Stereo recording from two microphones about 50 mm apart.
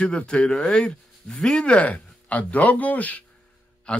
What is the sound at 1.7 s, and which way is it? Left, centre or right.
Speech, left.